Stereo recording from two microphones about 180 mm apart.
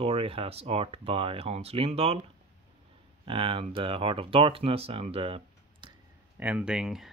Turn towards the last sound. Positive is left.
turn(degrees=-5)  # may be behind; listen again after turning